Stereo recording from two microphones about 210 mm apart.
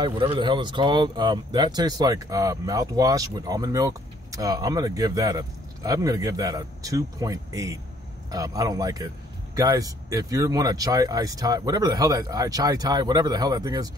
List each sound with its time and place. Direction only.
0.0 s speech: 25° right (ahead or behind)